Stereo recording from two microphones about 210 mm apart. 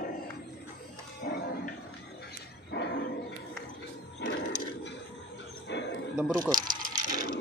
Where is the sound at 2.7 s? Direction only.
50° left (ahead or behind).